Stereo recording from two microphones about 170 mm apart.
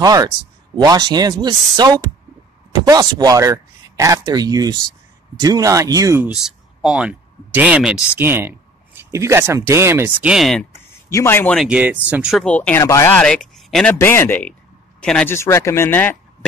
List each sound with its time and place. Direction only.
0.0 s speech: 20° right (ahead or behind)
6.2 s speech: 5° right (ahead or behind)
11.1 s speech: 15° left (ahead or behind)
11.5 s speech: 5° right (ahead or behind)
12.4 s speech: 10° left (ahead or behind)
13.1 s speech: 5° left (ahead or behind)
13.9 s speech: 15° left (ahead or behind)
15.3 s speech: 15° left (ahead or behind)